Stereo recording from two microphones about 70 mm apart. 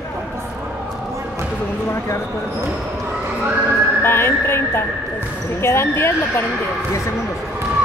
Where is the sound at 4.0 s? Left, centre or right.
Left.